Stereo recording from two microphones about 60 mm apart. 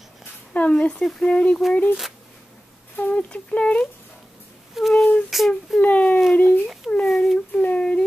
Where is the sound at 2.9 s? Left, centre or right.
Left.